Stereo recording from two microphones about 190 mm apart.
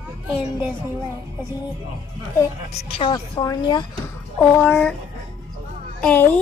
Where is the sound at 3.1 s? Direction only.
20° left (ahead or behind).